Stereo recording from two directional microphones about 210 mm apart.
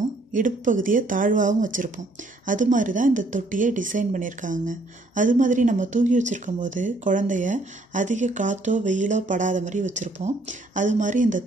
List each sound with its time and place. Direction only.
0.3 s speech: 40° right (ahead or behind)